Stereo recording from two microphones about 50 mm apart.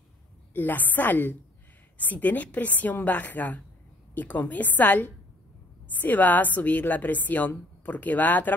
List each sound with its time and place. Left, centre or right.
0.5 s a woman's voice: left